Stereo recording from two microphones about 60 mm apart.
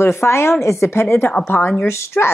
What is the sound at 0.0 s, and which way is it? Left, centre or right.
A woman's voice, left.